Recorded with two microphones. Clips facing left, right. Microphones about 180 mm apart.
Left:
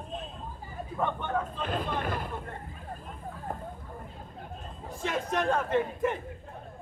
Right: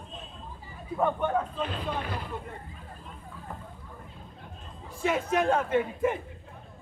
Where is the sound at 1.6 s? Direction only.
50° left (ahead or behind).